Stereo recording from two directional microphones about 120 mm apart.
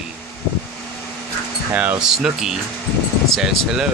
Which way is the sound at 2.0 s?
5° right (ahead or behind).